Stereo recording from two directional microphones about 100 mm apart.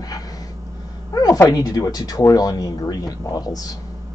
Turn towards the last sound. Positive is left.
turn(degrees=40)  # may be behind; listen again after turning